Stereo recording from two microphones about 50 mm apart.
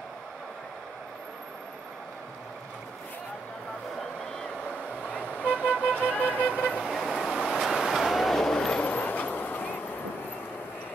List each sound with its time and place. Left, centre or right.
5.1 s vehicle: left
5.5 s vehicle: right
6.2 s vehicle: left
6.8 s vehicle: centre
8.8 s train: left